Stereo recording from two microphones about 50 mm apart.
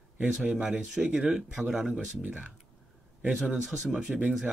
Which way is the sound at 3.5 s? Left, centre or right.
Centre.